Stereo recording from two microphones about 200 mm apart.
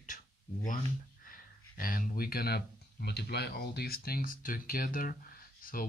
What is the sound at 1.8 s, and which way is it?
Speech, 45° left (ahead or behind).